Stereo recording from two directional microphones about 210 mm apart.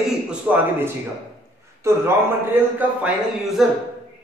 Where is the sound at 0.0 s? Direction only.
5° right (ahead or behind).